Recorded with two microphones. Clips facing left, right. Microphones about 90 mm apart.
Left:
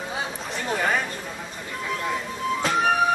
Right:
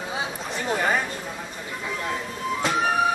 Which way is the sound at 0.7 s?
5° right (ahead or behind).